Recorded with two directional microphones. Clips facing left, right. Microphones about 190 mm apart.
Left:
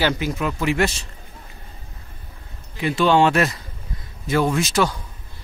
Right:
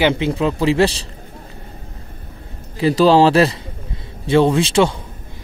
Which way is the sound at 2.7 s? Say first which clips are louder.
Right 5 dB; 35° right (ahead or behind).